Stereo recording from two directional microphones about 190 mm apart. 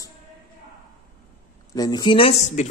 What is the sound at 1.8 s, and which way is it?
Speech, 20° left (ahead or behind).